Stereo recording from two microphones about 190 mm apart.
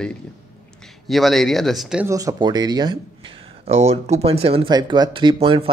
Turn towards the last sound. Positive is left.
turn(degrees=-30)  # may be behind; listen again after turning